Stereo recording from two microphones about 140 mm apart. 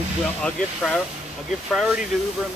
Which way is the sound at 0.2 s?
Centre (ahead or behind).